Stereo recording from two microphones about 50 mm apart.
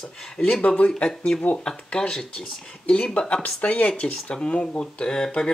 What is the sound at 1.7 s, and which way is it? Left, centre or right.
Speech, centre.